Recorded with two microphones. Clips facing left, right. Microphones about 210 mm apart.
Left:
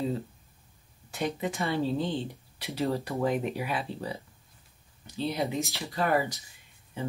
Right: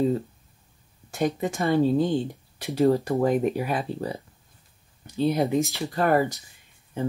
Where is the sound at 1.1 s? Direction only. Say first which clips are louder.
Right 5 dB; 45° right (ahead or behind).